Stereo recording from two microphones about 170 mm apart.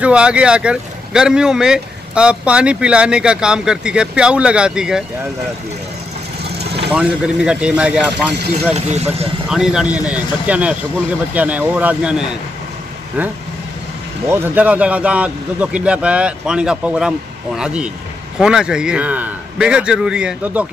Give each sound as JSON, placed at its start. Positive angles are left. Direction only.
{"t": 0.0, "sound": "speech", "side_deg": -5}
{"t": 6.9, "sound": "speech", "side_deg": -5}
{"t": 8.7, "sound": "speech", "side_deg": -40}
{"t": 9.5, "sound": "a man's voice", "side_deg": -5}
{"t": 14.3, "sound": "a man's voice", "side_deg": -10}